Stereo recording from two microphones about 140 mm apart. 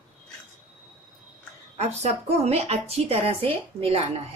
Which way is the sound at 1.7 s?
50° right (ahead or behind).